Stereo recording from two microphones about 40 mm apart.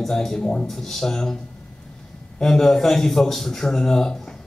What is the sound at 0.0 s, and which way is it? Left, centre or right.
Speech, centre.